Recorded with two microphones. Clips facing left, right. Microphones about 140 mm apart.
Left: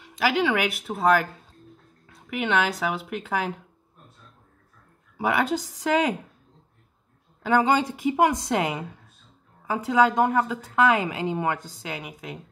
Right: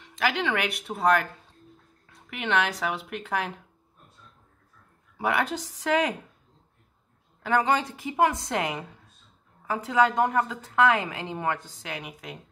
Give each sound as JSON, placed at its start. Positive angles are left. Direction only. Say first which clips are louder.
{"t": 0.0, "sound": "speech", "louder": "left 4 dB", "side_deg": 5}
{"t": 2.2, "sound": "speech", "louder": "left 2 dB", "side_deg": 5}
{"t": 5.1, "sound": "a woman's voice", "louder": "left 3 dB", "side_deg": 5}
{"t": 7.9, "sound": "a woman's voice", "louder": "left 3 dB", "side_deg": 15}